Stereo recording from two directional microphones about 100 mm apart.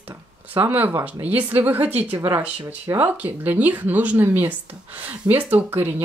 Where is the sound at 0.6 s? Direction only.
20° right (ahead or behind).